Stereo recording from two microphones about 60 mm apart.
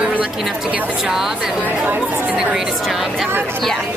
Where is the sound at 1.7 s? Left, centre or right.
Right.